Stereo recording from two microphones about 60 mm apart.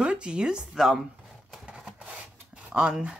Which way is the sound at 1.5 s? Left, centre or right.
Centre.